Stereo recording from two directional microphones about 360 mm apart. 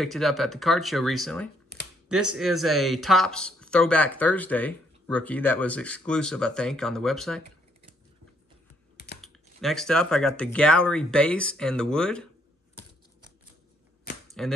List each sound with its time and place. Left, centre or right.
0.0 s speech: centre
1.7 s computer keyboard: left
2.3 s speech: centre
9.2 s speech: centre
14.4 s speech: centre